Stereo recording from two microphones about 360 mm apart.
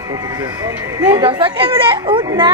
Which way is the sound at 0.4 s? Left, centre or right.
Centre.